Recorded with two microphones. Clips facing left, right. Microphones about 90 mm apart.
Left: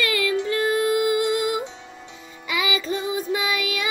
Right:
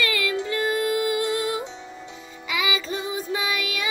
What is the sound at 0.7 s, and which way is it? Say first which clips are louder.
Music: left 3 dB; 20° left (ahead or behind).